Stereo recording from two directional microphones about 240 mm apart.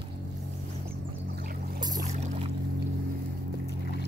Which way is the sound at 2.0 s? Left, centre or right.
Right.